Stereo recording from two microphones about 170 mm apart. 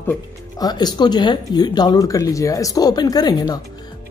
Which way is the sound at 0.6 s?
25° left (ahead or behind).